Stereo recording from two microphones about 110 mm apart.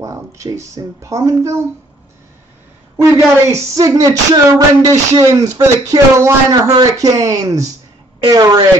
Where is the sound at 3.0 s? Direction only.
25° right (ahead or behind).